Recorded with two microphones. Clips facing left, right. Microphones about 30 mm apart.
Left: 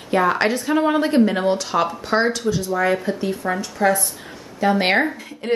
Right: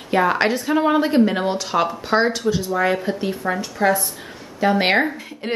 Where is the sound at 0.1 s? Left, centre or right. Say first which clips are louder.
Even; centre.